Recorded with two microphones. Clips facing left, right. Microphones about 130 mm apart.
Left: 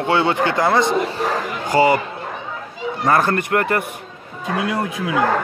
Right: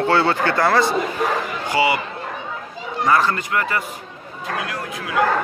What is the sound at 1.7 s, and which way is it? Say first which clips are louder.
Speech: left 4 dB; 45° left (ahead or behind).